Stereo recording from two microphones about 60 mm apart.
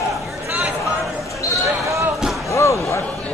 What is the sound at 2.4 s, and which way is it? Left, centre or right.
Slam, left.